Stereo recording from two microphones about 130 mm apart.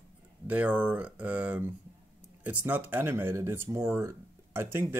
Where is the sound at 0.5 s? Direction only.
10° right (ahead or behind).